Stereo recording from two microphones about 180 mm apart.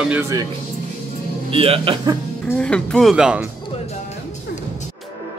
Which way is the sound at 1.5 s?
30° right (ahead or behind).